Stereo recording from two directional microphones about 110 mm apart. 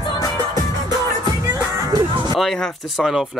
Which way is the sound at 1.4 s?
35° right (ahead or behind).